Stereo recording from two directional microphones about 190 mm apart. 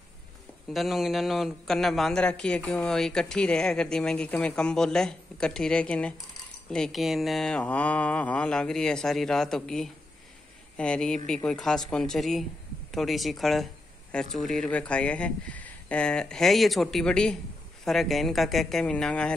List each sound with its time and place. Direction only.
0.7 s a man's voice: centre (ahead or behind)